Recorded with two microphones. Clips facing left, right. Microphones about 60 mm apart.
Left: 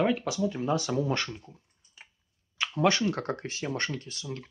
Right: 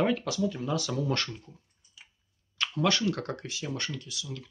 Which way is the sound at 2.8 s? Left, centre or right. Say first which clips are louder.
Left 2 dB; left.